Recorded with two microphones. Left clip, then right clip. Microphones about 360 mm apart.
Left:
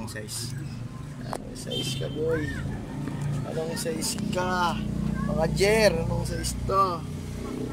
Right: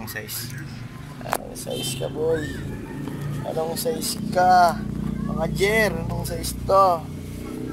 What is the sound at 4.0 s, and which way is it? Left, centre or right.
Speech, centre.